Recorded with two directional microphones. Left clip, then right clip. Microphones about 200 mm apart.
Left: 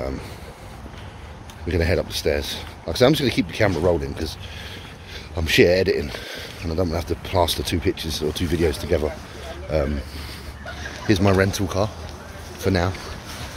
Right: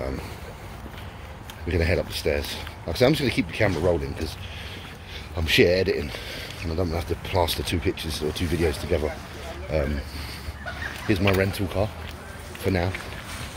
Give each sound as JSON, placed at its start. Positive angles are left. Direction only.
{"t": 1.7, "sound": "speech", "side_deg": 15}
{"t": 5.3, "sound": "speech", "side_deg": 25}
{"t": 11.1, "sound": "speech", "side_deg": 20}
{"t": 11.3, "sound": "speech", "side_deg": 10}